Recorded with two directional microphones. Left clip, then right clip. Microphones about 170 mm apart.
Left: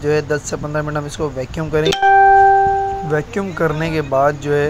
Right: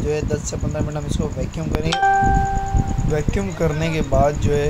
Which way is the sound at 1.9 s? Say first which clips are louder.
Left 4 dB; 90° left.